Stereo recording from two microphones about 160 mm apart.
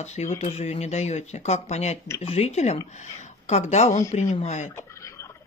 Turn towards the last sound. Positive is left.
turn(degrees=15)  # may be behind; listen again after turning